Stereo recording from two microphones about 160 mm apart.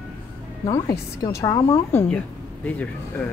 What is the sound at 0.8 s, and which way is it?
Speech, 25° left (ahead or behind).